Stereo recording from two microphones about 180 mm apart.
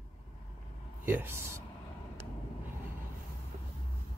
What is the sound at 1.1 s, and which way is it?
Speech, 15° right (ahead or behind).